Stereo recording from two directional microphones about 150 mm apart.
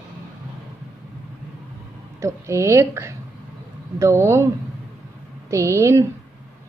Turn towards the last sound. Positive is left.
turn(degrees=-20)  # may be behind; listen again after turning